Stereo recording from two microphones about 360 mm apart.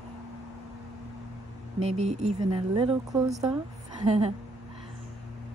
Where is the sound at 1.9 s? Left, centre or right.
Centre.